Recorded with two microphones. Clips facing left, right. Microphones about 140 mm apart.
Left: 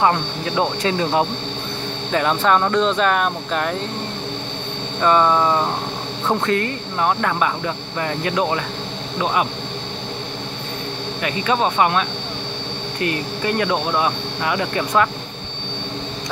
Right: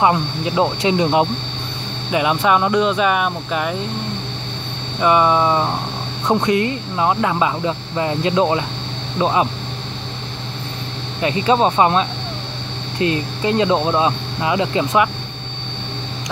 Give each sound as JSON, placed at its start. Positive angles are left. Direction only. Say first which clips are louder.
{"t": 0.0, "sound": "speech", "louder": "right 2 dB", "side_deg": -15}
{"t": 5.0, "sound": "speech", "louder": "right 1 dB", "side_deg": -10}
{"t": 11.2, "sound": "speech", "louder": "right 4 dB", "side_deg": -30}